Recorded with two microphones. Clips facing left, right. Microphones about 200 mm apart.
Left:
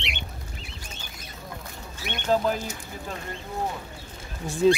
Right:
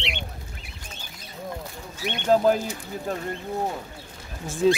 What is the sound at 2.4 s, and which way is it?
Speech, 40° right (ahead or behind).